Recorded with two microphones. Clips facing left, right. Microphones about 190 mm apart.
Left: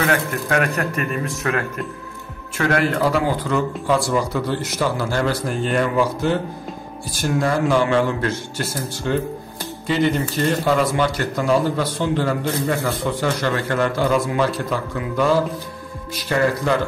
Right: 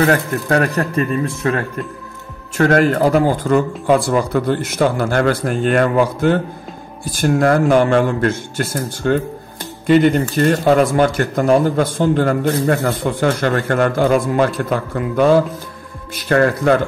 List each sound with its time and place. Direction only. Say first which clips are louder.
0.0 s speech: right 5 dB; 35° right (ahead or behind)
2.5 s speech: right 6 dB; 45° right (ahead or behind)